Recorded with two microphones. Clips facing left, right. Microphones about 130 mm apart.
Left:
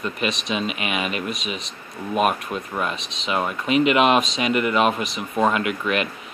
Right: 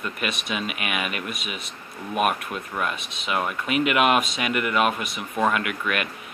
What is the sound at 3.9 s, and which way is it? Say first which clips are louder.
Speech: left 3 dB; 25° left (ahead or behind).